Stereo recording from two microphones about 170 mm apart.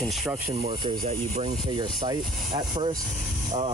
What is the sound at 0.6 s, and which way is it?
Speech, 35° right (ahead or behind).